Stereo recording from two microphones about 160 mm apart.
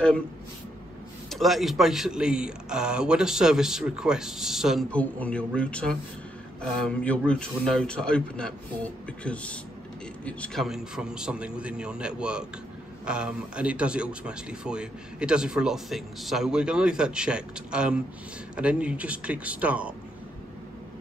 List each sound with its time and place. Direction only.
1.3 s speech: centre (ahead or behind)